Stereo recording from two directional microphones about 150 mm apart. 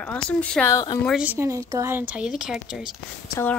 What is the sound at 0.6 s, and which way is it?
Speech, 25° left (ahead or behind).